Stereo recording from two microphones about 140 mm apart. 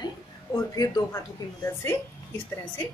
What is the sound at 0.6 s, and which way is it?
Speech, 25° left (ahead or behind).